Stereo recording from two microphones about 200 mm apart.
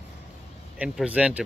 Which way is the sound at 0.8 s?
5° right (ahead or behind).